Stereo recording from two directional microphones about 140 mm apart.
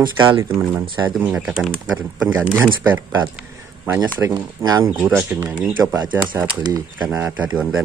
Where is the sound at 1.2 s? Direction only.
5° right (ahead or behind).